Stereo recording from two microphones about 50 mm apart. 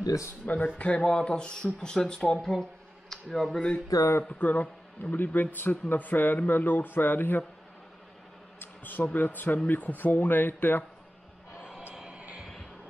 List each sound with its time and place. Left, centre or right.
0.5 s speech: left; by 3.6 s centre
4.4 s speech: left
8.5 s speech: left
11.9 s a sound: centre
12.2 s music: right